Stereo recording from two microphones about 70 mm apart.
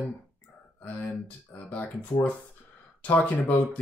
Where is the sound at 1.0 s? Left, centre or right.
Centre.